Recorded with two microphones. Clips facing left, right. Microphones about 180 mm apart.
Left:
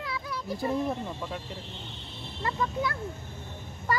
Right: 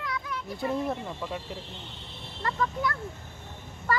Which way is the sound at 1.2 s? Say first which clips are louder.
Right 1 dB; centre (ahead or behind).